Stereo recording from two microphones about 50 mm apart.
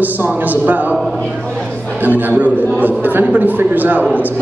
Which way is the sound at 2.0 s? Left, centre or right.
Right.